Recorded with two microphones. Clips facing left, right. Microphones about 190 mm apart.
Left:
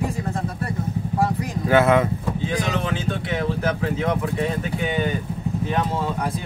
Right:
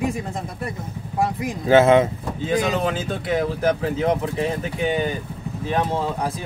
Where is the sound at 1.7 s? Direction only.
25° right (ahead or behind).